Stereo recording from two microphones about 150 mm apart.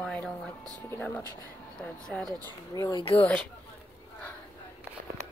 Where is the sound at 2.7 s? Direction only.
20° left (ahead or behind).